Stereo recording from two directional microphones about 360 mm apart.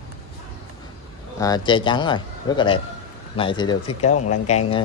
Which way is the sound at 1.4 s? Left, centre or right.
Centre.